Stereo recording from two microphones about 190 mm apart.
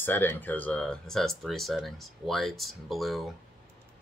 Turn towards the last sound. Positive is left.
turn(degrees=0)  # may be behind; listen again after turning